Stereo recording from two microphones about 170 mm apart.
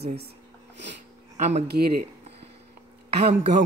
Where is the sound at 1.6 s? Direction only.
70° right (ahead or behind).